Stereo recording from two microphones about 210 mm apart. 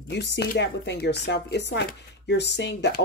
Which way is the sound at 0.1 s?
55° left (ahead or behind).